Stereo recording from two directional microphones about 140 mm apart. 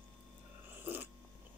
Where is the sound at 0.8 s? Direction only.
15° right (ahead or behind).